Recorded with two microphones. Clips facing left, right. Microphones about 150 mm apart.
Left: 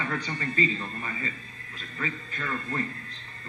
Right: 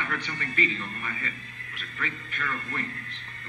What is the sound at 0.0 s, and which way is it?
A man's voice, 25° left (ahead or behind).